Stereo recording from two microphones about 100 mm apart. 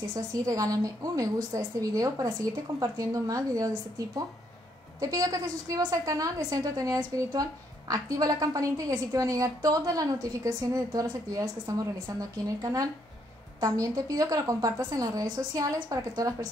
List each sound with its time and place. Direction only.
0.1 s a woman's voice: 35° right (ahead or behind)